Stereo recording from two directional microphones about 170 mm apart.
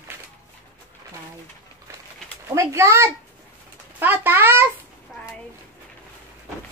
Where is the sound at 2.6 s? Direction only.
15° right (ahead or behind).